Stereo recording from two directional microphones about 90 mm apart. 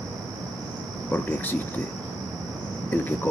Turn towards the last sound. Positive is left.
turn(degrees=20)  # may be behind; listen again after turning